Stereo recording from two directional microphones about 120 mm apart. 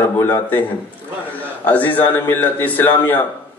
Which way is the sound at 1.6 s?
15° left (ahead or behind).